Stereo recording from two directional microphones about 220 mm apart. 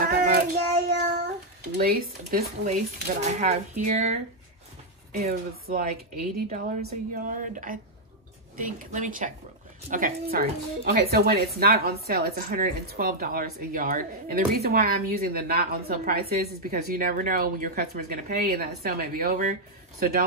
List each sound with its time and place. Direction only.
0.1 s child singing: 45° right (ahead or behind)
1.8 s speech: 45° right (ahead or behind)